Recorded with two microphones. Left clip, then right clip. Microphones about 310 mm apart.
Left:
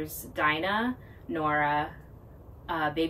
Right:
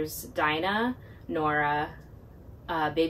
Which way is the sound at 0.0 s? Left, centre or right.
Centre.